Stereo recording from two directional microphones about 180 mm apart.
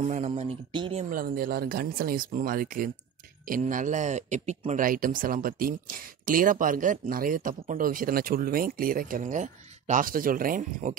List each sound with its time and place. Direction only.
0.0 s speech: 40° right (ahead or behind)
1.1 s speech: 55° right (ahead or behind)